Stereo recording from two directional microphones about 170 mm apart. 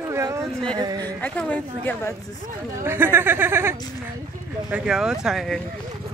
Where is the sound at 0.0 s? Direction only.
15° right (ahead or behind).